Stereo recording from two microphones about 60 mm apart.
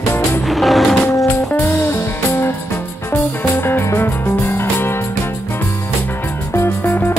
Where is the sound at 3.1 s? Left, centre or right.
Left.